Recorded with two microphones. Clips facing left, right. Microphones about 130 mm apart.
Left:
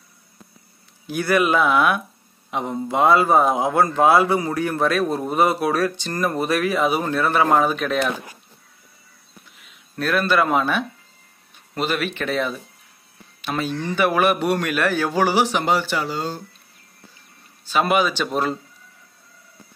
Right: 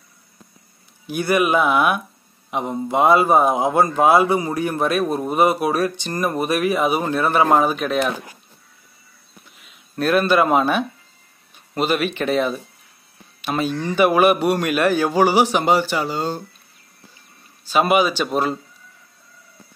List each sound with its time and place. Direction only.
1.0 s a man's voice: 15° right (ahead or behind)
9.9 s a man's voice: 20° right (ahead or behind)
17.6 s a man's voice: 10° right (ahead or behind)